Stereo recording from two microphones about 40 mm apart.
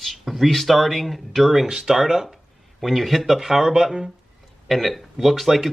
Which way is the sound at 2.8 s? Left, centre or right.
Centre.